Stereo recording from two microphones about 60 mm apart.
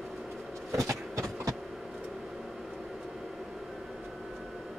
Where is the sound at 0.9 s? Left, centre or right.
Right.